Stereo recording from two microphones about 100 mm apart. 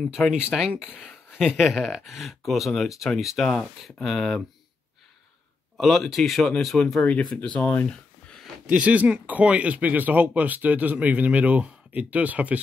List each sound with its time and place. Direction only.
0.3 s speech: 5° right (ahead or behind)
0.7 s speech: 15° left (ahead or behind)
1.0 s speech: 5° right (ahead or behind)
5.8 s speech: centre (ahead or behind)
8.6 s speech: 10° right (ahead or behind)